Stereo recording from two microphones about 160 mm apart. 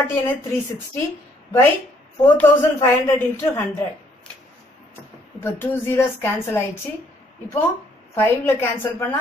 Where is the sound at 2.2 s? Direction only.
10° left (ahead or behind).